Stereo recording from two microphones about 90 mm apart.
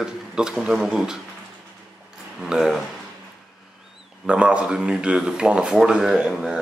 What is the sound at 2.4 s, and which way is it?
Speech, 5° right (ahead or behind).